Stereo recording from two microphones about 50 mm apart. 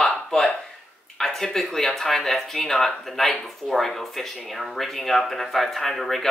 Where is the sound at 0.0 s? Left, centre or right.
Centre.